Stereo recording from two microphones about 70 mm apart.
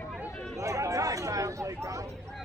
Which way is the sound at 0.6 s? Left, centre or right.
Right.